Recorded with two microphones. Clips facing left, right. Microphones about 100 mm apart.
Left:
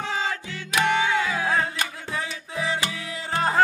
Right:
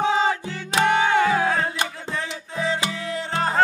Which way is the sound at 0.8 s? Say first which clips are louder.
Right 5 dB; 50° right (ahead or behind).